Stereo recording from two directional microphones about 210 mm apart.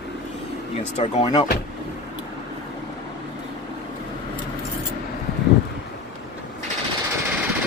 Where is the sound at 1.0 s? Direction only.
30° left (ahead or behind).